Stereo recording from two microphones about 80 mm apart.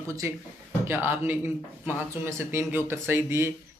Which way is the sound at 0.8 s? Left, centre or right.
Right.